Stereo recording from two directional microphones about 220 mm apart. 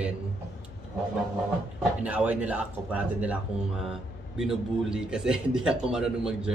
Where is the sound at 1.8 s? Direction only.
5° right (ahead or behind).